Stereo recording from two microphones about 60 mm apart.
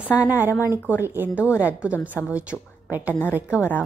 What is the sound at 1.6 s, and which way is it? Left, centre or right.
A woman's voice, right.